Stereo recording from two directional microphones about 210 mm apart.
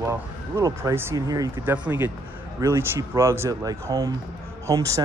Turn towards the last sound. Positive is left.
turn(degrees=-15)  # may be behind; listen again after turning